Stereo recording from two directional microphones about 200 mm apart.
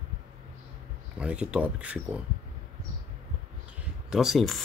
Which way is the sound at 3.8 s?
5° right (ahead or behind).